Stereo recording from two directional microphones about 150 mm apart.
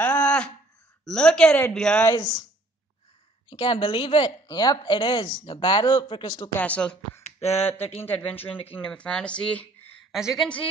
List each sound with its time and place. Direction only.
0.0 s a sound: 10° left (ahead or behind)
1.0 s speech: 5° left (ahead or behind)
2.0 s speech: 25° left (ahead or behind)
3.4 s speech: 35° left (ahead or behind)
6.5 s speech: 10° left (ahead or behind)
7.2 s a sound: 45° left (ahead or behind)
7.7 s speech: 40° left (ahead or behind)
8.0 s speech: 10° left (ahead or behind)
8.5 s speech: 35° left (ahead or behind)
8.7 s speech: 5° left (ahead or behind)
10.1 s speech: 5° right (ahead or behind)